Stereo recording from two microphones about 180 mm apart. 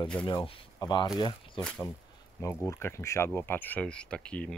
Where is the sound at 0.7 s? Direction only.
20° left (ahead or behind).